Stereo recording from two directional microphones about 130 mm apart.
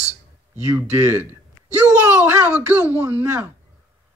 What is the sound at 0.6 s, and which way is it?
Speech, 15° right (ahead or behind).